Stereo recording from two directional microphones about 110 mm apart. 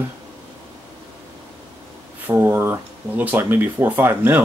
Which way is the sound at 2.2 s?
20° right (ahead or behind).